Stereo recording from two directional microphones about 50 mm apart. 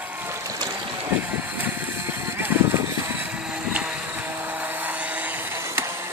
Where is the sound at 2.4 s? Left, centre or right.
Right.